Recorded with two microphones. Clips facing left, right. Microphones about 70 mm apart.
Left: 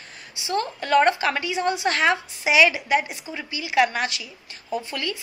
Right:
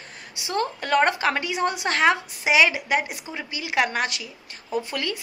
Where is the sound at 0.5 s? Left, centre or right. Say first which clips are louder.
Left 2 dB; right.